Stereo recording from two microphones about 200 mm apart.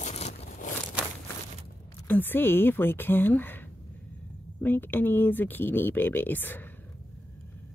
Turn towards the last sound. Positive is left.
turn(degrees=10)  # may be behind; listen again after turning